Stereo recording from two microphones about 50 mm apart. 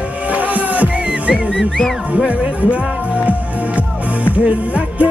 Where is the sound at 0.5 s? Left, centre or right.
Right.